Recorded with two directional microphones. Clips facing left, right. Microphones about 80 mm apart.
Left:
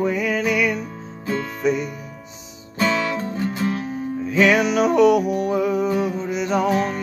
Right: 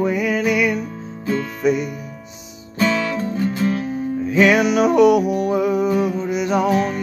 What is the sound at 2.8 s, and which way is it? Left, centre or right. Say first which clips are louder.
Music: right 2 dB; centre.